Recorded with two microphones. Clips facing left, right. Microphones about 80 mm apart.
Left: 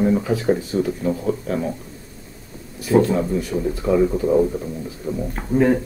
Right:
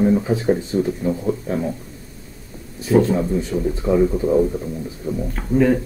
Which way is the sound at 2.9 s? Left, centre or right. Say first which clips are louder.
Even; centre.